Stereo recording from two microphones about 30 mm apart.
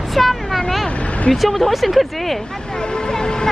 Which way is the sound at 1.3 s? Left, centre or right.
Centre.